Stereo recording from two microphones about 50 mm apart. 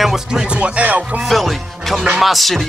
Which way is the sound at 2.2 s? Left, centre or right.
Centre.